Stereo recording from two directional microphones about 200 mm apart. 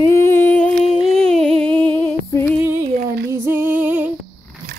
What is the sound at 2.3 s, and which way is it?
Music, 15° left (ahead or behind).